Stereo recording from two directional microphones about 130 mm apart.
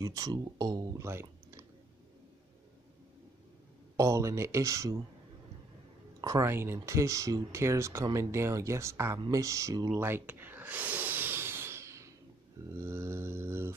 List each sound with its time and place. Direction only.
0.0 s speech: 30° right (ahead or behind)
3.9 s speech: 25° right (ahead or behind)
6.2 s speech: 20° right (ahead or behind)
9.9 s a sound: 15° right (ahead or behind)